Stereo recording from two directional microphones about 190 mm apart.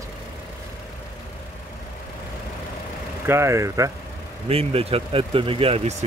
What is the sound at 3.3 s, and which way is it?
Speech, 15° right (ahead or behind).